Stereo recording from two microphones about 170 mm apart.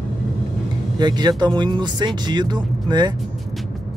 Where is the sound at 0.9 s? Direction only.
25° right (ahead or behind).